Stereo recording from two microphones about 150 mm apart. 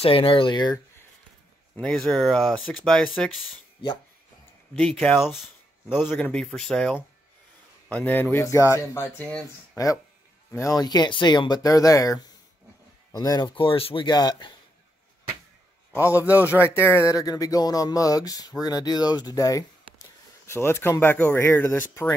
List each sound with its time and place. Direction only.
0.0 s speech: 35° left (ahead or behind)
1.8 s speech: 5° left (ahead or behind)
4.7 s speech: 5° left (ahead or behind)
6.0 s speech: 10° left (ahead or behind)
10.6 s speech: 25° left (ahead or behind)
16.1 s a man's voice: 10° right (ahead or behind)
16.4 s speech: 15° left (ahead or behind)